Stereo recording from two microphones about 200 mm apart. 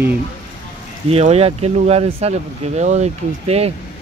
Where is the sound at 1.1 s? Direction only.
30° right (ahead or behind).